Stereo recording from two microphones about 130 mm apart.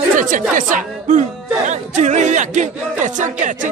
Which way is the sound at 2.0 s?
65° right (ahead or behind).